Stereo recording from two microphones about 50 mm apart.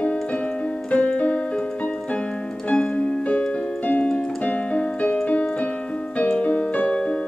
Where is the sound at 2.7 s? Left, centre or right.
Left.